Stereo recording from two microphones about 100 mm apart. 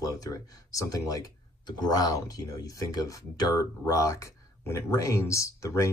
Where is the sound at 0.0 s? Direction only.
35° left (ahead or behind).